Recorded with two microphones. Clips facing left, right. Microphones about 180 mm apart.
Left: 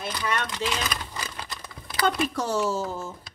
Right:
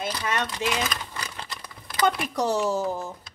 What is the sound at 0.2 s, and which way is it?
Speech, 20° right (ahead or behind).